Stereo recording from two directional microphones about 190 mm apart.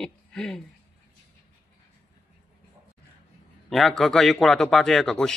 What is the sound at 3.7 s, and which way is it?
Speech, centre (ahead or behind).